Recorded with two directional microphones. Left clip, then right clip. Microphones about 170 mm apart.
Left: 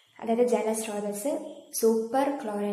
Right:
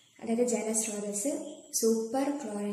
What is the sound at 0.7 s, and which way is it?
A woman's voice, 15° right (ahead or behind).